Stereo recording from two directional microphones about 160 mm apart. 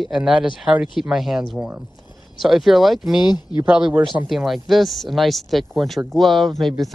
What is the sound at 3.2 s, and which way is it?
Speech, 25° left (ahead or behind).